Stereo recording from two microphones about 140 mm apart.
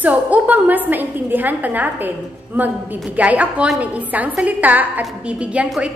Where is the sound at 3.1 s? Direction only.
10° right (ahead or behind).